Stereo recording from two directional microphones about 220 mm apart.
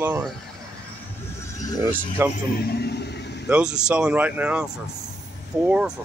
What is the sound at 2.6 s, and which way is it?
Vehicle, 45° left (ahead or behind).